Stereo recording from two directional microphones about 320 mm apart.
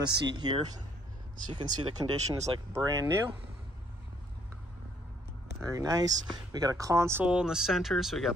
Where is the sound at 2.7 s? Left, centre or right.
Centre.